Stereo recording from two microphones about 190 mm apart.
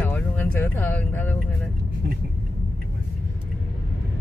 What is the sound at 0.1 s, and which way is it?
Speech, 10° left (ahead or behind).